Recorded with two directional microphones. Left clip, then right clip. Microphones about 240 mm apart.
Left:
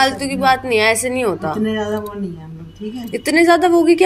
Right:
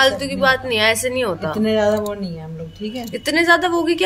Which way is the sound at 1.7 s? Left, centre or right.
Right.